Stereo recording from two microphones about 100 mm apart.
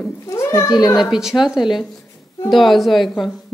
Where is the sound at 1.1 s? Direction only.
5° right (ahead or behind).